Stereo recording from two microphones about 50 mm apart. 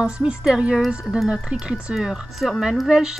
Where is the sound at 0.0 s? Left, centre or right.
Centre.